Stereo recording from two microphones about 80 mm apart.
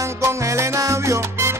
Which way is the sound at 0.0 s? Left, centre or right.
Right.